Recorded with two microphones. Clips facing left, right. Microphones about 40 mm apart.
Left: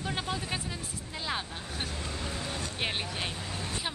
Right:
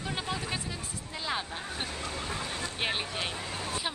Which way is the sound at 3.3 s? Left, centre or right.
Right.